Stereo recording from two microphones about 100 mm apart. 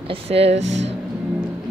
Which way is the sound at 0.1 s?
85° right.